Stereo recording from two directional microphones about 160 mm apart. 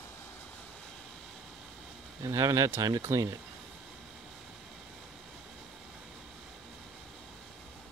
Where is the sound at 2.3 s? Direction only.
20° right (ahead or behind).